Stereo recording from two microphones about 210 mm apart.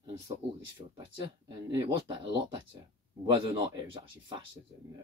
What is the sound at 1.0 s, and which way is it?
Speech, 20° right (ahead or behind).